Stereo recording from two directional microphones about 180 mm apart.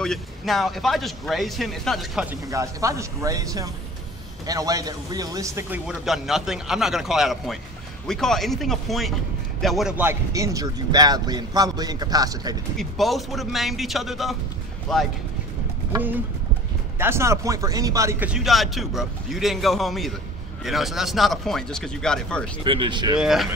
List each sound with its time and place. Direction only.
0.0 s speech: centre (ahead or behind)
2.5 s a man's voice: 15° right (ahead or behind)
5.9 s a man's voice: centre (ahead or behind); by 12.5 s 20° right (ahead or behind)
12.7 s speech: centre (ahead or behind)
17.0 s speech: 15° right (ahead or behind)
18.3 s speech: centre (ahead or behind)
22.6 s a man's voice: 30° right (ahead or behind)
23.1 s speech: centre (ahead or behind)